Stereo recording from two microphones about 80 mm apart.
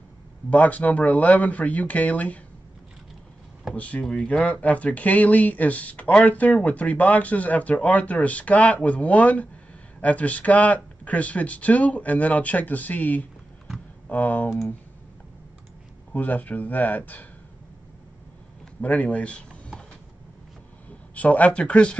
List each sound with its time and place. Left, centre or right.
0.5 s speech: centre
3.7 s speech: centre
16.1 s speech: centre
18.8 s speech: centre
21.1 s speech: centre